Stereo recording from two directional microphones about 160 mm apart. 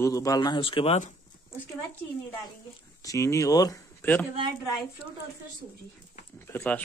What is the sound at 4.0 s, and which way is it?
Speech, 10° left (ahead or behind).